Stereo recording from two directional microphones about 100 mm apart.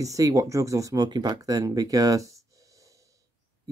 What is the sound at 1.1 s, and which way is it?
Speech, 45° right (ahead or behind).